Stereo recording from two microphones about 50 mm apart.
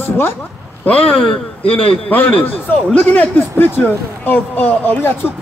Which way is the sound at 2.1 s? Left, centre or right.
Left.